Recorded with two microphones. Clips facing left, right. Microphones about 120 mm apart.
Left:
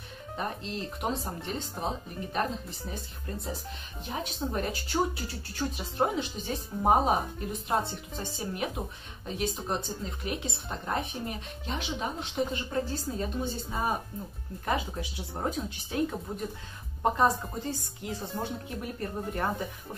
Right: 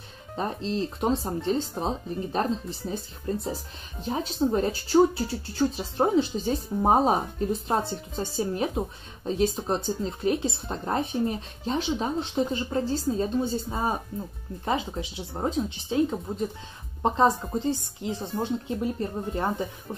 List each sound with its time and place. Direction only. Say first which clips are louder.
0.4 s speech: right 7 dB; 30° right (ahead or behind)